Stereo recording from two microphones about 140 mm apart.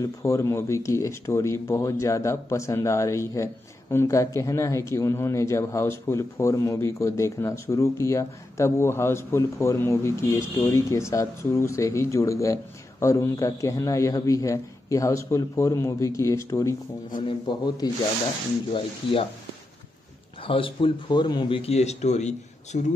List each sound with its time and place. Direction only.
0.0 s a man's voice: 25° left (ahead or behind)
17.2 s speech: 35° left (ahead or behind)
20.4 s speech: 40° left (ahead or behind); by 22.8 s 55° left (ahead or behind)